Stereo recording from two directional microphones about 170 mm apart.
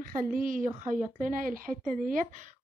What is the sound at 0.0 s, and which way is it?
A woman's voice, 55° right (ahead or behind).